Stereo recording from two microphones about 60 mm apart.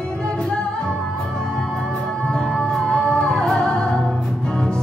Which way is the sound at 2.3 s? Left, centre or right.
Centre.